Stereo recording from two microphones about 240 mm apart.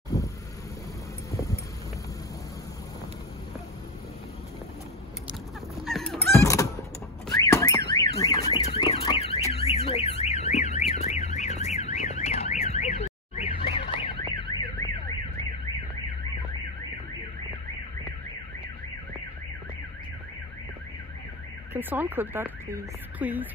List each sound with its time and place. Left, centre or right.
1.3 s vehicle: centre
5.9 s a sound: centre
6.3 s thunk: centre
7.2 s car alarm: centre
21.7 s speech: centre